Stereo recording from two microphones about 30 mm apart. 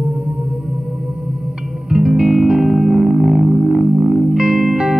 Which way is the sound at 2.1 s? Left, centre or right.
Right.